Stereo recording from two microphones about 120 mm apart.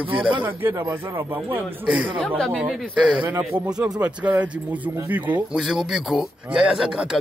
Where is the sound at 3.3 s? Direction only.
15° right (ahead or behind).